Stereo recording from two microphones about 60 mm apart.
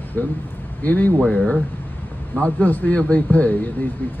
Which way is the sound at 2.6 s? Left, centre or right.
Left.